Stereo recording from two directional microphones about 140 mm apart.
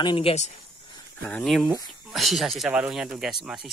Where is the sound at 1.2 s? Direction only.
5° left (ahead or behind).